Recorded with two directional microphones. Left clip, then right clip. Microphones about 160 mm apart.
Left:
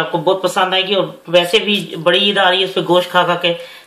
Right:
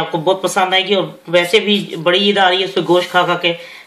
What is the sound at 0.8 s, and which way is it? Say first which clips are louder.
A man's voice: even; 35° right (ahead or behind).